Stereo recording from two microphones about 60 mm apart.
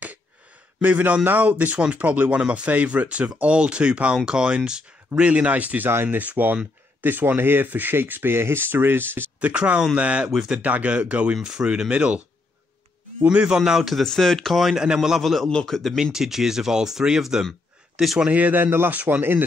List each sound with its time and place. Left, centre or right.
0.8 s speech: right
9.4 s speech: right
10.3 s speech: centre
10.6 s speech: right
11.3 s speech: centre
13.2 s speech: centre
13.7 s speech: centre
16.0 s speech: centre
18.3 s speech: right